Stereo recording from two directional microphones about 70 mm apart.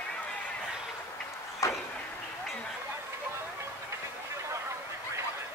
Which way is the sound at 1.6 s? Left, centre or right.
Left.